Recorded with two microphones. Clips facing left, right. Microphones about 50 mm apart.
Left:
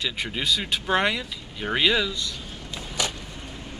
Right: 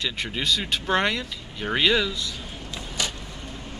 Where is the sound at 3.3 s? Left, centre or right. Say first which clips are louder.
Right 1 dB; centre.